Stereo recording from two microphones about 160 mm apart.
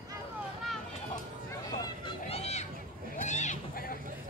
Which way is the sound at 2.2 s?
40° left (ahead or behind).